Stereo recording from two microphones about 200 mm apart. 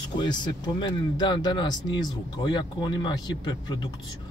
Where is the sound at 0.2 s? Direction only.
20° left (ahead or behind).